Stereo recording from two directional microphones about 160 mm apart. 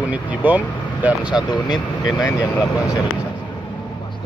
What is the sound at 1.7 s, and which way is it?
Speech, 25° left (ahead or behind).